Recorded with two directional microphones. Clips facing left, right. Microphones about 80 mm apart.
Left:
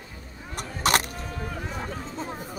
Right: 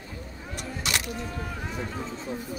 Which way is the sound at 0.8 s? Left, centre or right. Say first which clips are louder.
Left 8 dB; left.